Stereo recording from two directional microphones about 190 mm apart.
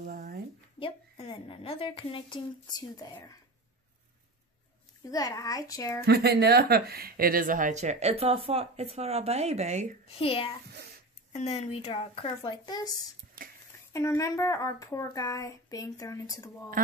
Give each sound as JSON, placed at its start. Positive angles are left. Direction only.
{"t": 0.0, "sound": "a sound", "side_deg": -50}
{"t": 0.7, "sound": "a woman's voice", "side_deg": 30}
{"t": 5.1, "sound": "speech", "side_deg": 20}
{"t": 5.9, "sound": "speech", "side_deg": -55}
{"t": 10.0, "sound": "a woman's voice", "side_deg": 30}
{"t": 13.9, "sound": "speech", "side_deg": 15}
{"t": 16.8, "sound": "speech", "side_deg": -45}